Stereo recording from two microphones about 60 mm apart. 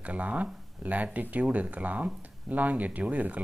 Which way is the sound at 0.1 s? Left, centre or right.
Right.